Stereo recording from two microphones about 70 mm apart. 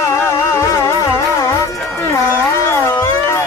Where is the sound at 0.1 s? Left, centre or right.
Left.